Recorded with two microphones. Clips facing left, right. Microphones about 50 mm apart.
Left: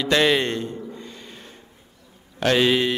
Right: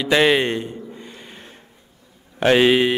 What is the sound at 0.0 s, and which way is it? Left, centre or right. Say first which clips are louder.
A man's voice: right 3 dB; centre.